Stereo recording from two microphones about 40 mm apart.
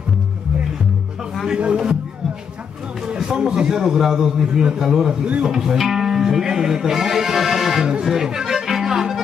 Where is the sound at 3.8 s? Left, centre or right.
Centre.